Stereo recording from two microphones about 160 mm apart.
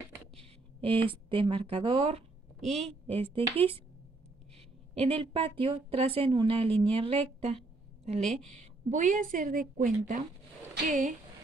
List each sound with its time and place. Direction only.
0.7 s a woman's voice: 35° right (ahead or behind)
4.9 s a woman's voice: 35° right (ahead or behind); by 11.1 s 55° right (ahead or behind)